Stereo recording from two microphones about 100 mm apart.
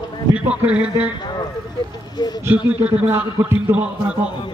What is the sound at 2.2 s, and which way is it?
Speech, 45° left (ahead or behind).